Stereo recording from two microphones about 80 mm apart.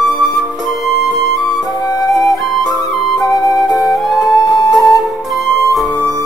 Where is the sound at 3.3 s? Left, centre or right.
Left.